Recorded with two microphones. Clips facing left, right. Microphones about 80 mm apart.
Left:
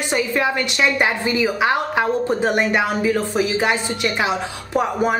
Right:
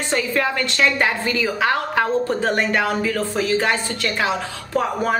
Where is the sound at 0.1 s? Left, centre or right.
Centre.